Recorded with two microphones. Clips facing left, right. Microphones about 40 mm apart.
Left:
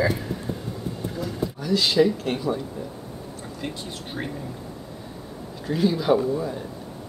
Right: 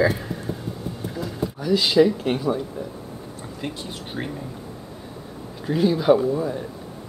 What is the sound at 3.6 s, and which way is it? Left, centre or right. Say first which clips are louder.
Speech: right 2 dB; centre.